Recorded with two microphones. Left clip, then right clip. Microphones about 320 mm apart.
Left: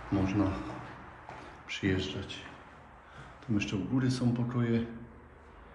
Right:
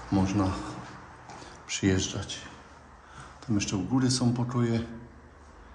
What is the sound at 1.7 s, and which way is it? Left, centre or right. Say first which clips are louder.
Speech: right 4 dB; centre.